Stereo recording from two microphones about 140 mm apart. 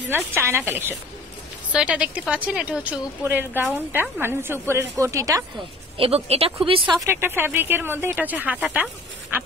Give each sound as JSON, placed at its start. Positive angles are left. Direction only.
{"t": 0.1, "sound": "speech", "side_deg": -15}
{"t": 5.9, "sound": "speech", "side_deg": -45}
{"t": 7.0, "sound": "speech", "side_deg": -20}